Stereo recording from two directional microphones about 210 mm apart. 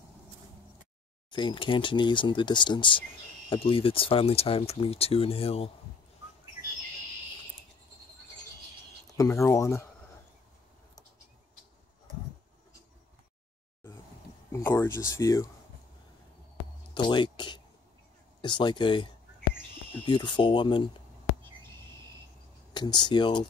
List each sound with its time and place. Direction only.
1.3 s speech: 20° left (ahead or behind)
9.1 s speech: 15° left (ahead or behind)
14.5 s speech: 15° left (ahead or behind)
16.9 s speech: 20° left (ahead or behind)
20.1 s speech: 20° left (ahead or behind)
22.8 s speech: 20° left (ahead or behind)